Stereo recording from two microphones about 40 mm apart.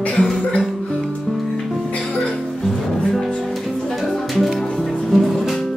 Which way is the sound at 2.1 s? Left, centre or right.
Left.